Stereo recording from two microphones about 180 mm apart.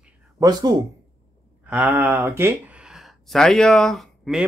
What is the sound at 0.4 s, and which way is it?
Speech, 20° right (ahead or behind).